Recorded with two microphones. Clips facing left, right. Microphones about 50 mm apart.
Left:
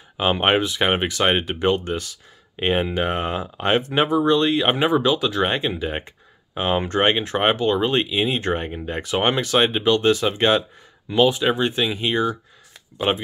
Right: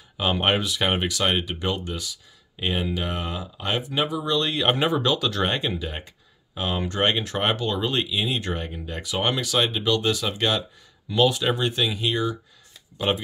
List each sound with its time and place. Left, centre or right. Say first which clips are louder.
0.2 s speech: left 4 dB; left
4.5 s speech: left 4 dB; centre
5.8 s speech: left 6 dB; left